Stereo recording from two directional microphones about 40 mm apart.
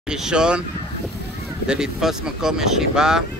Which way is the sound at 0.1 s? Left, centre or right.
Centre.